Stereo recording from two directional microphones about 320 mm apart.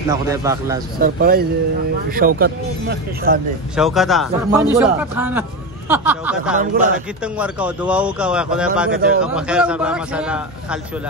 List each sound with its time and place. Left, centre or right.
0.1 s a man's voice: centre
0.9 s speech: right
3.7 s a man's voice: centre
6.6 s speech: right
7.3 s a man's voice: centre